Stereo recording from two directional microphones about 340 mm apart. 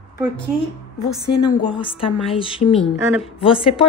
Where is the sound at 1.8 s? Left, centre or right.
Centre.